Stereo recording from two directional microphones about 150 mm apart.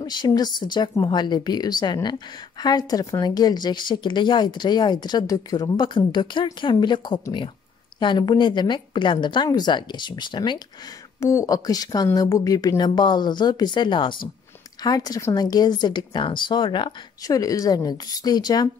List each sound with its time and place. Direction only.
0.0 s a woman's voice: 30° left (ahead or behind)
11.1 s speech: 20° left (ahead or behind)